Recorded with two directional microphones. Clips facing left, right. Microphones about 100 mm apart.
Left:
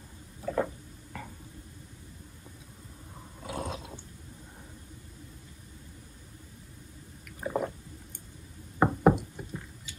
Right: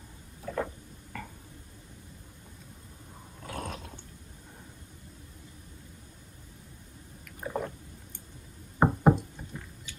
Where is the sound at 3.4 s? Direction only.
15° left (ahead or behind).